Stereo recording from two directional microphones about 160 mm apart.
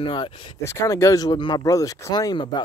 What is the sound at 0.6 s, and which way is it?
Speech, 15° left (ahead or behind).